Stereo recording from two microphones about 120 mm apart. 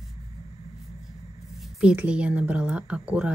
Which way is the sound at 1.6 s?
10° right (ahead or behind).